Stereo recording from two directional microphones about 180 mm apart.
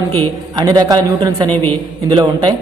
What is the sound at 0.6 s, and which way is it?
Speech, 20° right (ahead or behind).